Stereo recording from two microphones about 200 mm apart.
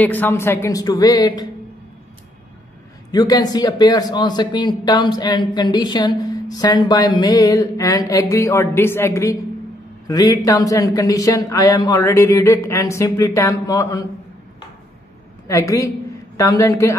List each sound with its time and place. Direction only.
0.0 s speech: 10° left (ahead or behind)
3.1 s a man's voice: 20° left (ahead or behind)
15.4 s speech: 15° left (ahead or behind)